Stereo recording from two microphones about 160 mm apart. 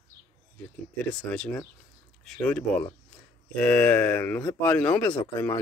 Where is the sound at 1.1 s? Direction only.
5° left (ahead or behind).